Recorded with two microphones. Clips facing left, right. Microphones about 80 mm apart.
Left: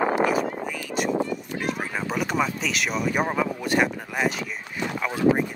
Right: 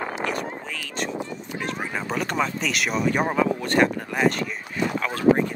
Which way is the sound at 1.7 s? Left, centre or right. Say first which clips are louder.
Even; centre.